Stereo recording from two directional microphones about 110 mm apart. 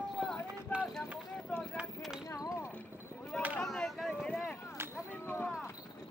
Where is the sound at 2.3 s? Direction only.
25° left (ahead or behind).